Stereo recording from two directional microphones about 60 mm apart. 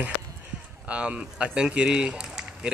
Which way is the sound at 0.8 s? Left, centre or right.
Centre.